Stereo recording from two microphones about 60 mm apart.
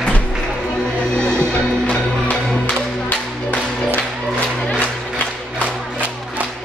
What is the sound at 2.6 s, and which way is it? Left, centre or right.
Music, left.